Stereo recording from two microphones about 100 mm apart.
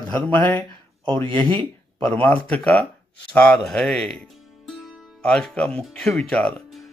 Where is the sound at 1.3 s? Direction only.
55° right (ahead or behind).